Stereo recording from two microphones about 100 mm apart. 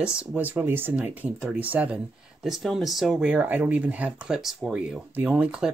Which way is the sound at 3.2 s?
15° right (ahead or behind).